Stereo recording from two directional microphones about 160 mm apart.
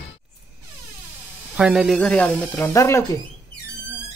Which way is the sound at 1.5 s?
5° right (ahead or behind).